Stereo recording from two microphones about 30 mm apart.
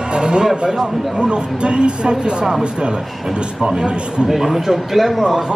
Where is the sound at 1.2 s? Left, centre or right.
Right.